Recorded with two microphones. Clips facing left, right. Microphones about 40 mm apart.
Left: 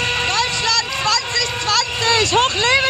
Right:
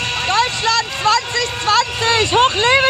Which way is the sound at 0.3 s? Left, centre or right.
Centre.